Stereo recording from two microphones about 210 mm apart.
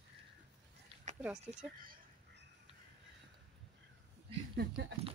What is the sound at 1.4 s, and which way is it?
Speech, 35° right (ahead or behind).